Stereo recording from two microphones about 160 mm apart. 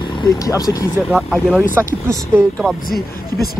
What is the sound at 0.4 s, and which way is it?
Speech, 20° left (ahead or behind).